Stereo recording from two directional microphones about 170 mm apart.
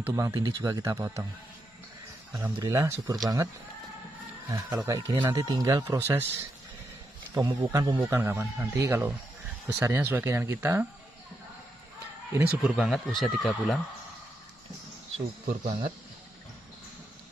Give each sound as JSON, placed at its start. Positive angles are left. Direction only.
{"t": 0.0, "sound": "speech", "side_deg": -20}
{"t": 2.3, "sound": "speech", "side_deg": -20}
{"t": 4.5, "sound": "speech", "side_deg": -20}
{"t": 7.3, "sound": "speech", "side_deg": -20}
{"t": 12.3, "sound": "speech", "side_deg": -10}
{"t": 15.4, "sound": "speech", "side_deg": -50}